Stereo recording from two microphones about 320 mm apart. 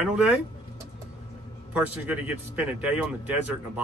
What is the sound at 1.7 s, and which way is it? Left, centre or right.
A man's voice, centre.